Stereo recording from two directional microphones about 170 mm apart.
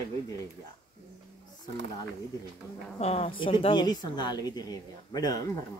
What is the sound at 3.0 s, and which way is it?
A woman's voice, 35° left (ahead or behind).